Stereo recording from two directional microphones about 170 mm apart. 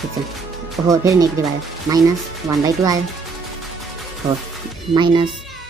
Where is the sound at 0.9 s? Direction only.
20° right (ahead or behind).